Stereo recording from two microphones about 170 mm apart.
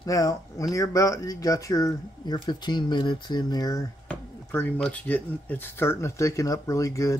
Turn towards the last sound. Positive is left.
turn(degrees=20)  # may be behind; listen again after turning